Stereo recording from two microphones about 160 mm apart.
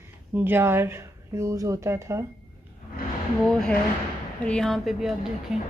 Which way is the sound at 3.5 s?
5° left (ahead or behind).